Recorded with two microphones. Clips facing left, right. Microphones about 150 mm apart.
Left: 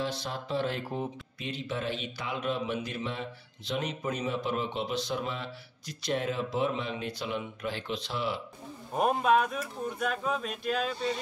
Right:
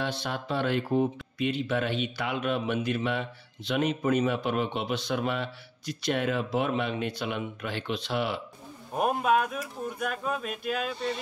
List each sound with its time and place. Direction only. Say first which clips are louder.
0.0 s mantra: right 2 dB; 65° right (ahead or behind)
8.9 s speech: even; centre (ahead or behind)